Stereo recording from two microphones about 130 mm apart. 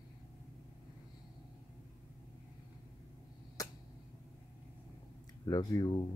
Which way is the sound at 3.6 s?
25° left (ahead or behind).